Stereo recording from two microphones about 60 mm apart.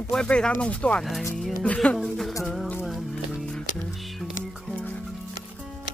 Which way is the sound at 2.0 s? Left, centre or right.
Centre.